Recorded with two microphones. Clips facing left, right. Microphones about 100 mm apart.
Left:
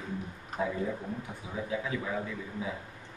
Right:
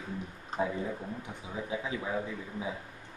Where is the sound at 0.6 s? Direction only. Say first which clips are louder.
Even; 25° right (ahead or behind).